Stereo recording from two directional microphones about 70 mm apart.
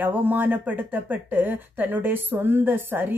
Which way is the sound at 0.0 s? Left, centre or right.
Right.